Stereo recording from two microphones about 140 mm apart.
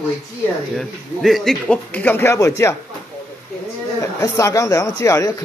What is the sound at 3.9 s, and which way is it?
Speech, 20° left (ahead or behind).